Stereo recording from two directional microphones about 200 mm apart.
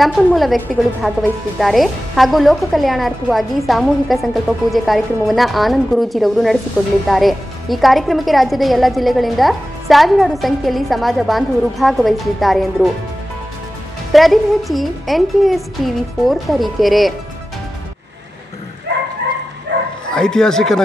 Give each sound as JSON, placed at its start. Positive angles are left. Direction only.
{"t": 0.0, "sound": "a woman's voice", "side_deg": 0}
{"t": 14.1, "sound": "a woman's voice", "side_deg": 0}
{"t": 18.9, "sound": "a sound", "side_deg": -60}
{"t": 19.7, "sound": "bow-wow", "side_deg": -60}
{"t": 20.1, "sound": "speech", "side_deg": 5}